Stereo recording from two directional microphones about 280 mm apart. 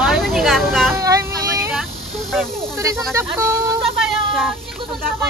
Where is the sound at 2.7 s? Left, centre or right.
Centre.